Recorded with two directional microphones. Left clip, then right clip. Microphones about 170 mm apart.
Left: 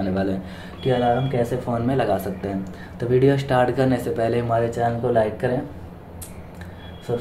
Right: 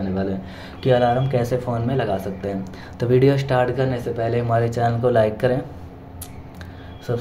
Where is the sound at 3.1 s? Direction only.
25° right (ahead or behind).